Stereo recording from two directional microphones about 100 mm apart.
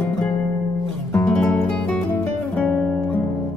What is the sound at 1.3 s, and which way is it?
Music, 15° left (ahead or behind).